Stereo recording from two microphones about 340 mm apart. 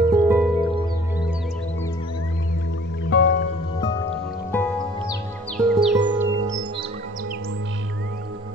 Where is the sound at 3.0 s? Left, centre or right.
Left.